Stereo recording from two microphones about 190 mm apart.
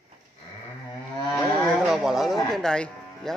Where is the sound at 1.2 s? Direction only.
15° left (ahead or behind).